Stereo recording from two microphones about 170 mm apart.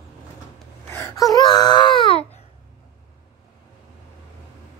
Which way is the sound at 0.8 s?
15° left (ahead or behind).